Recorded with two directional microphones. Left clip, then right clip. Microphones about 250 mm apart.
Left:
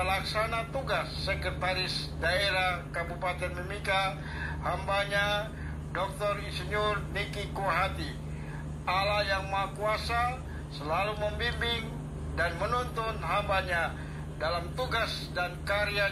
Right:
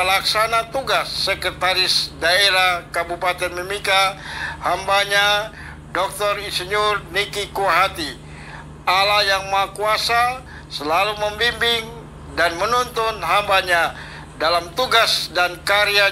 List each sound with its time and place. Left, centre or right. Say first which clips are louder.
0.0 s speech: right 12 dB; right